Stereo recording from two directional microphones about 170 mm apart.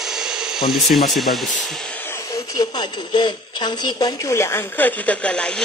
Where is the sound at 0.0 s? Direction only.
5° right (ahead or behind).